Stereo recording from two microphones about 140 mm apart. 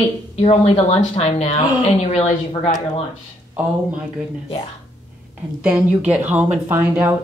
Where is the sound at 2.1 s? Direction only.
60° left (ahead or behind).